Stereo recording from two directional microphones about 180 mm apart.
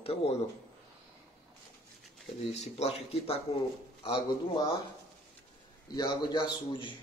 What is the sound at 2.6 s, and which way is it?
A man's voice, 35° left (ahead or behind).